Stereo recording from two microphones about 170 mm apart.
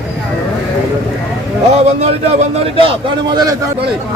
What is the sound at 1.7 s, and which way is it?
A man's voice, 40° right (ahead or behind).